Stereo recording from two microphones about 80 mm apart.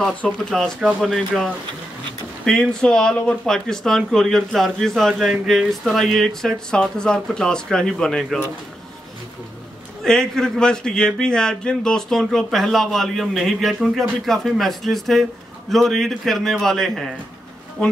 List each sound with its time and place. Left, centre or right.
0.5 s speech: centre
10.0 s speech: centre